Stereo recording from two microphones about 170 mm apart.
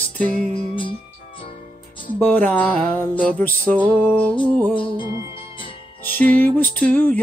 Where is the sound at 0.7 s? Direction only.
30° left (ahead or behind).